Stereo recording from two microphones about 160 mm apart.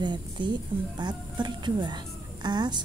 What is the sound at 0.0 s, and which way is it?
Speech, 30° right (ahead or behind).